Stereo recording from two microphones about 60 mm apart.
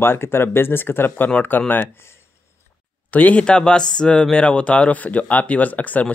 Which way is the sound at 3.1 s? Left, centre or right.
Left.